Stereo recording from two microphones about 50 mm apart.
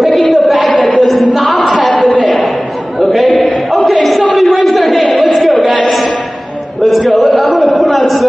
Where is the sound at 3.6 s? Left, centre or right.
Centre.